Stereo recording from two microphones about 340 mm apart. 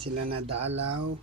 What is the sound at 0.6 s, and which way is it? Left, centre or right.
Speech, centre.